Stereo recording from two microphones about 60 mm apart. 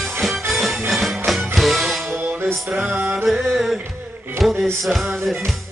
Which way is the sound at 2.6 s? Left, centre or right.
Centre.